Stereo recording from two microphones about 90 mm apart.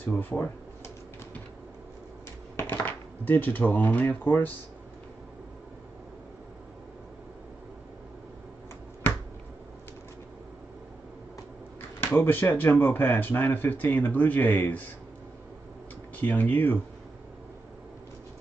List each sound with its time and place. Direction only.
0.0 s cash register: 20° left (ahead or behind)
2.5 s speech: 20° left (ahead or behind)
12.0 s speech: 25° left (ahead or behind)
16.2 s speech: 20° left (ahead or behind)